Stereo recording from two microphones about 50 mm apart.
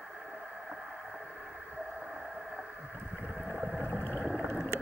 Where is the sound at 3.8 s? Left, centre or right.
Left.